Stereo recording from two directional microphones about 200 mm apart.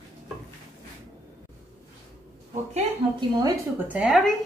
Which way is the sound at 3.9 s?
5° right (ahead or behind).